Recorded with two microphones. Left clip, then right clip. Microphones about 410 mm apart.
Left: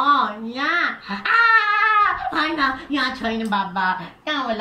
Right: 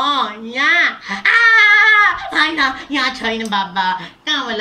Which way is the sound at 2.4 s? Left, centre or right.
Centre.